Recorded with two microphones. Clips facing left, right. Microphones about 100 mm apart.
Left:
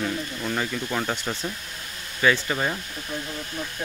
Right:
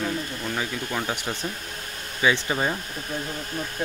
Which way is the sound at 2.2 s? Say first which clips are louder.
Even; 15° right (ahead or behind).